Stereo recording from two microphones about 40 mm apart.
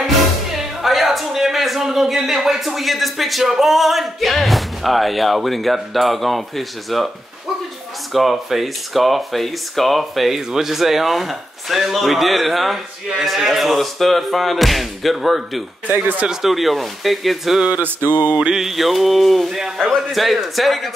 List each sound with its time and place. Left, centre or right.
0.8 s a sound: centre
1.9 s speech: centre
8.1 s speech: centre
15.9 s speech: right
16.3 s speech: centre